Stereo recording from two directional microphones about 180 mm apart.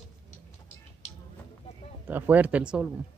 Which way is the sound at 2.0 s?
10° right (ahead or behind).